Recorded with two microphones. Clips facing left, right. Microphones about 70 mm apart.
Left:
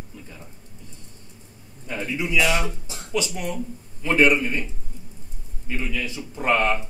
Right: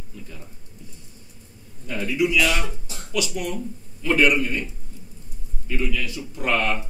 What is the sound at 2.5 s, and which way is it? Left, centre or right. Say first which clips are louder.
Speech: left 2 dB; centre.